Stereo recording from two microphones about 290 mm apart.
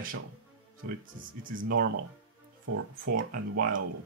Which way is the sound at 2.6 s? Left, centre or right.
Right.